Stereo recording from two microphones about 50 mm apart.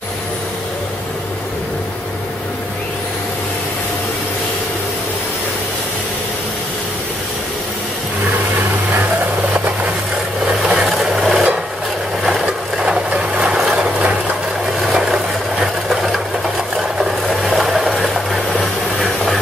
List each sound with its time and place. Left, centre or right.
10.6 s vehicle: centre
11.0 s rub: centre
12.7 s vehicle: centre
15.6 s sewing machine: centre
16.7 s vehicle: centre
18.5 s a sound: centre